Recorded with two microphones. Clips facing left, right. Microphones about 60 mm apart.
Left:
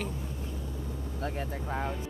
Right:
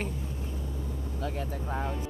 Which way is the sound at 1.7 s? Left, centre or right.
Centre.